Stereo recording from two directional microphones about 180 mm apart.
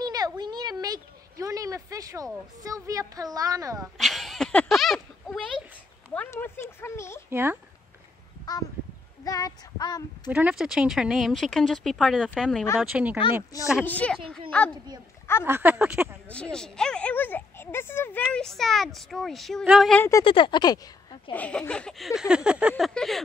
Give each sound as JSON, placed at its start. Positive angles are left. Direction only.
{"t": 0.0, "sound": "a sound", "side_deg": -20}
{"t": 2.6, "sound": "speech", "side_deg": -20}
{"t": 4.0, "sound": "a sound", "side_deg": 0}
{"t": 6.0, "sound": "speech", "side_deg": 10}
{"t": 7.2, "sound": "speech", "side_deg": -10}
{"t": 9.2, "sound": "child singing", "side_deg": 20}
{"t": 10.3, "sound": "speech", "side_deg": -5}
{"t": 13.8, "sound": "speech", "side_deg": 10}
{"t": 15.4, "sound": "speech", "side_deg": -10}
{"t": 16.3, "sound": "speech", "side_deg": 5}
{"t": 20.0, "sound": "speech", "side_deg": 15}
{"t": 20.2, "sound": "child singing", "side_deg": 25}
{"t": 21.3, "sound": "speech", "side_deg": 5}